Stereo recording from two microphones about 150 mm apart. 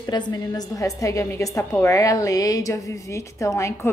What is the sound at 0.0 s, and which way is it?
A woman's voice, 25° left (ahead or behind).